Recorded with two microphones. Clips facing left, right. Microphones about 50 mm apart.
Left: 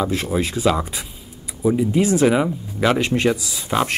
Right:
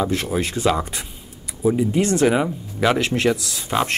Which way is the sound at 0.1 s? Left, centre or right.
Centre.